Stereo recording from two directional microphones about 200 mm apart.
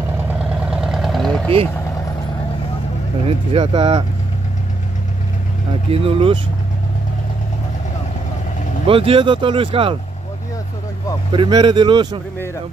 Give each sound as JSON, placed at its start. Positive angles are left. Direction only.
{"t": 0.4, "sound": "vehicle", "side_deg": -5}
{"t": 3.3, "sound": "speech", "side_deg": -25}
{"t": 5.9, "sound": "speech", "side_deg": -30}
{"t": 8.8, "sound": "speech", "side_deg": -25}
{"t": 11.3, "sound": "speech", "side_deg": -25}